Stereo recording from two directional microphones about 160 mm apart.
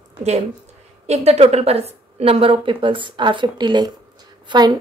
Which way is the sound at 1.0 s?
40° right (ahead or behind).